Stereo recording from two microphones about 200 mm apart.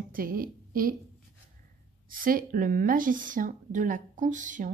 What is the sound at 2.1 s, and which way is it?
Speech, 45° right (ahead or behind).